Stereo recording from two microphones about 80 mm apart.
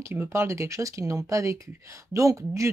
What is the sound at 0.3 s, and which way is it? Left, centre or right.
Speech, right.